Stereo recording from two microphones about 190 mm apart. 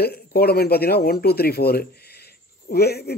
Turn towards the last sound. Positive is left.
turn(degrees=55)  # may be behind; listen again after turning